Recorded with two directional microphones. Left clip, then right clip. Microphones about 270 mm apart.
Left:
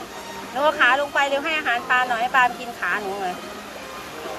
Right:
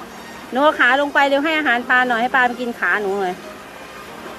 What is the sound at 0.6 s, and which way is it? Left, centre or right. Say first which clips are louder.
Speech: right 4 dB; right.